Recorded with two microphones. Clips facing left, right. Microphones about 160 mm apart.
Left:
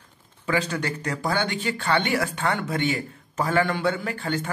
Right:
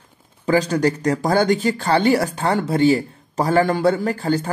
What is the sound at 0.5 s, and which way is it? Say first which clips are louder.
Speech: right 8 dB; 40° right (ahead or behind).